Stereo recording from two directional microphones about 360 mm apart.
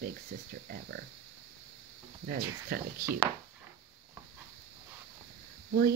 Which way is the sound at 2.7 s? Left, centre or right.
Right.